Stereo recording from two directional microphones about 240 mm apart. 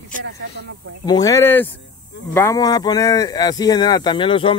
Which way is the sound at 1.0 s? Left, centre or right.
Centre.